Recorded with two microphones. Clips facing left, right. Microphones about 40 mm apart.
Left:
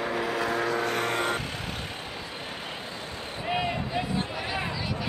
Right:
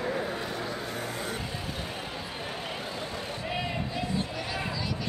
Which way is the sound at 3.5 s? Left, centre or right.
Left.